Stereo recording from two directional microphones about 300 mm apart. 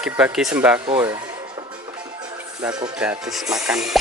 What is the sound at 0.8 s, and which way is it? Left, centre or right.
Speech, centre.